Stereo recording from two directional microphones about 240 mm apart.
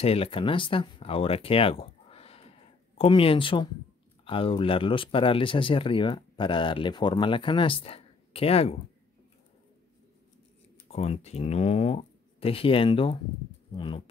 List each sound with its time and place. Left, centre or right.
0.0 s speech: left
10.9 s speech: left